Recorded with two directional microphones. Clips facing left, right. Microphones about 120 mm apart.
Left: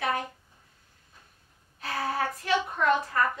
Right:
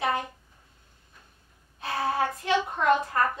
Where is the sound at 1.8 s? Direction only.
25° right (ahead or behind).